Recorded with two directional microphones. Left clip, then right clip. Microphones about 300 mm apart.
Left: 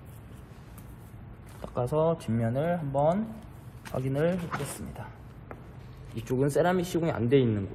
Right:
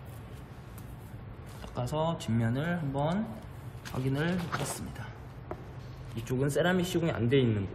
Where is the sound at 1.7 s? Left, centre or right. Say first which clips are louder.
Left 6 dB; centre.